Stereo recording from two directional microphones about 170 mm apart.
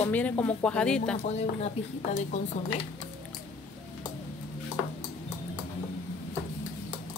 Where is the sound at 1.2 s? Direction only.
40° left (ahead or behind).